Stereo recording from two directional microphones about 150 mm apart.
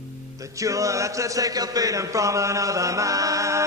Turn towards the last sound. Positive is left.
turn(degrees=-20)  # may be behind; listen again after turning